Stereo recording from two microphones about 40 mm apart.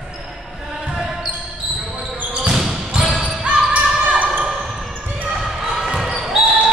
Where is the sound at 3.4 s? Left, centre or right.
Right.